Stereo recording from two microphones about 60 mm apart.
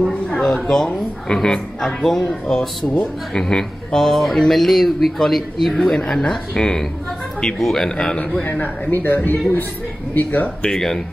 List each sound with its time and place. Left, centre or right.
0.0 s a sound: centre
0.7 s speech: centre
8.4 s speech: left
10.6 s speech: centre